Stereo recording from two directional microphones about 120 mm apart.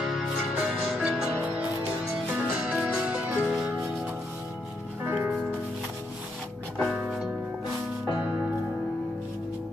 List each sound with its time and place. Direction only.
0.0 s music: 5° right (ahead or behind)
5.0 s music: 15° right (ahead or behind)
6.8 s music: centre (ahead or behind)